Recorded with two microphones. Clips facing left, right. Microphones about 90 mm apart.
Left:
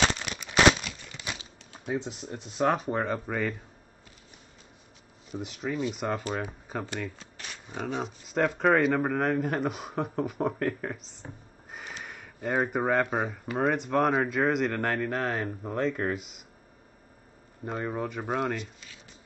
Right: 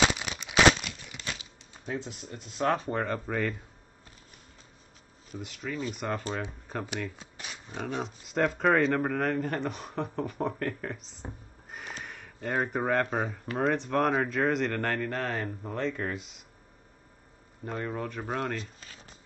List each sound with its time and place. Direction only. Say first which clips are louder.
0.0 s crumpling: right 1 dB; 5° right (ahead or behind)
1.1 s crumpling: left 1 dB; 10° left (ahead or behind)
1.9 s speech: left 4 dB; 20° left (ahead or behind); by 3.5 s 5° left (ahead or behind)
5.3 s speech: left 4 dB; 25° left (ahead or behind)
5.9 s speech: left 2 dB; 5° left (ahead or behind)
7.2 s dog: even; 10° right (ahead or behind)
7.6 s speech: left 1 dB; 5° left (ahead or behind)
17.6 s speech: left 2 dB; 5° left (ahead or behind)
18.6 s a sound: left 1 dB; 40° right (ahead or behind)